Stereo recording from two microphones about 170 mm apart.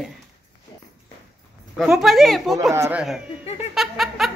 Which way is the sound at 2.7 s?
15° right (ahead or behind).